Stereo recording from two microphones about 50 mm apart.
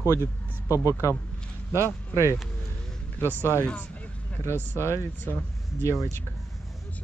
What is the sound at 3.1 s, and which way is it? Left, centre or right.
Speech, right.